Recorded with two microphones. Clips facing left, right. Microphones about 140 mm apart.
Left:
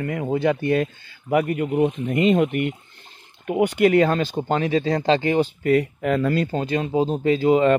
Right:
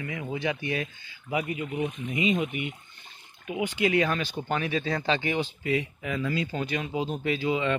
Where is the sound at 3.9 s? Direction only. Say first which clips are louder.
Left 8 dB; 40° left (ahead or behind); by 6.5 s 55° left (ahead or behind).